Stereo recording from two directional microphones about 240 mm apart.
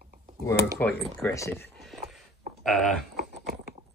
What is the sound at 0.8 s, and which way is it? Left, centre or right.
Speech, centre.